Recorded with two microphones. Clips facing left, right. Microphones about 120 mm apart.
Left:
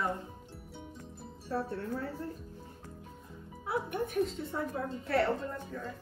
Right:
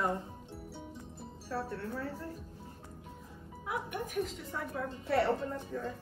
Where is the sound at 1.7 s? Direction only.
30° left (ahead or behind).